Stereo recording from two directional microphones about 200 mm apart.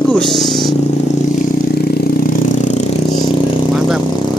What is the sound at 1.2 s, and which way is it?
Vehicle, 40° left (ahead or behind).